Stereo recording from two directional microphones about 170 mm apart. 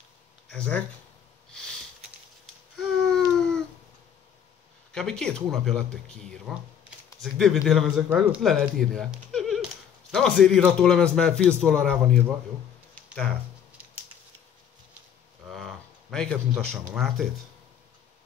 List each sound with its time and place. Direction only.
0.5 s speech: 5° left (ahead or behind)
1.5 s sniff: 5° left (ahead or behind)
2.8 s a sound: centre (ahead or behind)
4.9 s speech: 5° left (ahead or behind)
15.5 s speech: centre (ahead or behind)